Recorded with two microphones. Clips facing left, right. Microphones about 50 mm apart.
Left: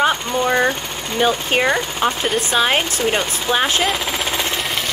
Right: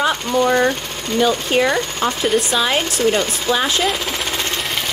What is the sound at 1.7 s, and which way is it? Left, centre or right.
Speech, centre.